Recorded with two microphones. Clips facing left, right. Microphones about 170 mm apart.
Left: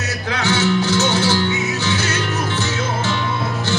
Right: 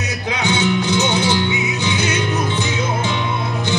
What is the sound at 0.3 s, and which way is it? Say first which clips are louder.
Music: even; 15° right (ahead or behind).